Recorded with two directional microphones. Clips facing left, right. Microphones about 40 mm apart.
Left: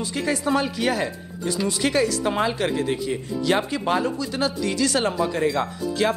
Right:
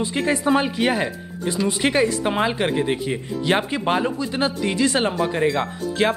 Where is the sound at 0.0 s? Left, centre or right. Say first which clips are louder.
Right 3 dB; right.